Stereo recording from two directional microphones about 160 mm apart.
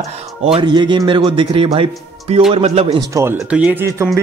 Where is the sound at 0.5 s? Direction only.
30° right (ahead or behind).